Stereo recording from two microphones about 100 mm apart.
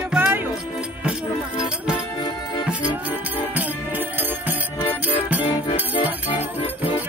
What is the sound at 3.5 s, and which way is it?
Music, 15° right (ahead or behind).